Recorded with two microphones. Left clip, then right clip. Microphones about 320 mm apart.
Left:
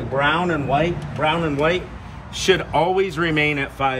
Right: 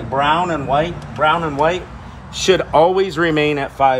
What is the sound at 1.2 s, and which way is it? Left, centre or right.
Speech, centre.